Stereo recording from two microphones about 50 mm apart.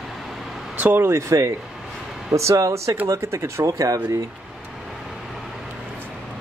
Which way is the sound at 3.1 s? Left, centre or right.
Right.